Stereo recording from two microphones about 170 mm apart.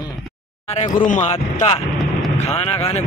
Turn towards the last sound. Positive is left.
turn(degrees=35)  # may be behind; listen again after turning